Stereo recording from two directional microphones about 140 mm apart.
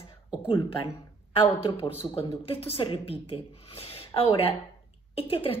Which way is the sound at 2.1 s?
40° left (ahead or behind).